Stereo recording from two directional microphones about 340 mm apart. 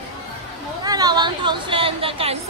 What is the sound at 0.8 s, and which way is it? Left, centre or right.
A woman's voice, centre.